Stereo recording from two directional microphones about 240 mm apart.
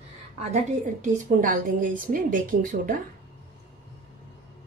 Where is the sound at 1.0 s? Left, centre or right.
Right.